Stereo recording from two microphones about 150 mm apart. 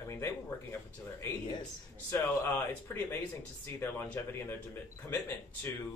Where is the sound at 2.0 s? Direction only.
15° left (ahead or behind).